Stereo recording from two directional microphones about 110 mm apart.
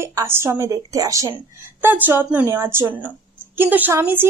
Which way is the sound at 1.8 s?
20° right (ahead or behind).